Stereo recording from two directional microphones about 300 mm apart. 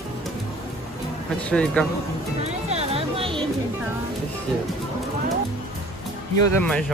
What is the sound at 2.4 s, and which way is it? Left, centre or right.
Music, centre.